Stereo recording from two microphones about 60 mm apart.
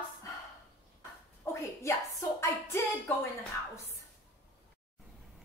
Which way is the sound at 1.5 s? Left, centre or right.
Left.